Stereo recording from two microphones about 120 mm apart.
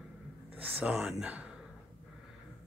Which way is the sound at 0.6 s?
10° right (ahead or behind).